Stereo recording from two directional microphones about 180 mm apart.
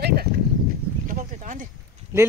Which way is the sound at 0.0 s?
60° right (ahead or behind).